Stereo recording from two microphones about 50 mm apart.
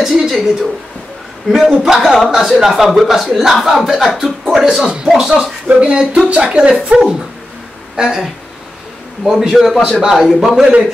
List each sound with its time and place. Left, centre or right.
0.0 s a woman's voice: centre
1.5 s speech: centre; by 6.7 s right
6.9 s speech: centre